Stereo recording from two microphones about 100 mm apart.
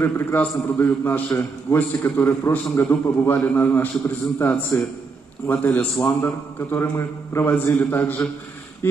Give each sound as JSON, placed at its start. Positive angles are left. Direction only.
{"t": 0.0, "sound": "a man's voice", "side_deg": 20}